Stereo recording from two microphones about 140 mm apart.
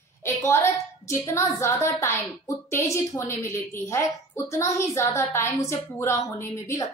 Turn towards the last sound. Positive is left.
turn(degrees=20)  # may be behind; listen again after turning